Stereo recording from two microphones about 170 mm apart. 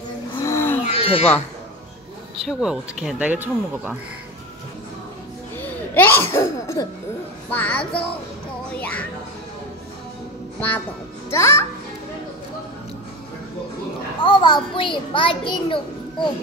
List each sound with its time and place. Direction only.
0.4 s a sound: 15° left (ahead or behind)
0.8 s a sound: 35° left (ahead or behind)
2.4 s speech: 5° right (ahead or behind)
5.6 s a child's voice: 10° left (ahead or behind)
11.2 s a child's voice: 15° left (ahead or behind)
14.2 s a child's voice: 25° left (ahead or behind)